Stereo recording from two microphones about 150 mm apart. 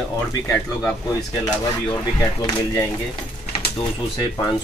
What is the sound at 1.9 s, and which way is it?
Speech, 20° left (ahead or behind).